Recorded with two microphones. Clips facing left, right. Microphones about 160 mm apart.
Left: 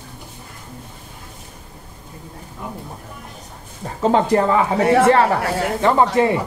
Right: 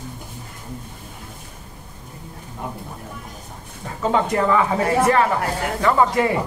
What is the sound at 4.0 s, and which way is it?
A man's voice, 30° left (ahead or behind).